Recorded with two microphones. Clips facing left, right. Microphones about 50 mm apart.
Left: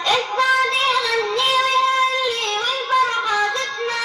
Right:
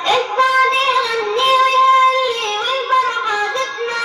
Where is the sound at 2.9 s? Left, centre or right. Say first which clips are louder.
Right 1 dB; right.